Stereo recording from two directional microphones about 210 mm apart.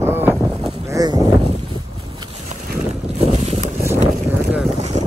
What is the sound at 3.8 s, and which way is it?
Boat, 10° right (ahead or behind).